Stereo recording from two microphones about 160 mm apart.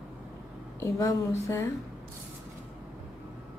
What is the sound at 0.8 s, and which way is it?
Speech, 20° left (ahead or behind).